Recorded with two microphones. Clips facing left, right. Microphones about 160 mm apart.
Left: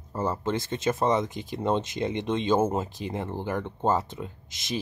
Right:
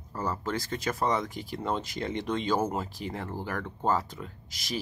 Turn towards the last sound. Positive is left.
turn(degrees=20)  # may be behind; listen again after turning